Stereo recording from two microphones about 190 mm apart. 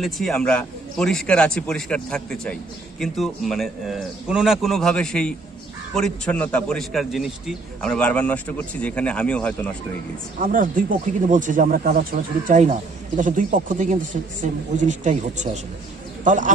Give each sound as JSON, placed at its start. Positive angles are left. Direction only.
{"t": 0.0, "sound": "a man's voice", "side_deg": 0}
{"t": 10.4, "sound": "speech", "side_deg": -45}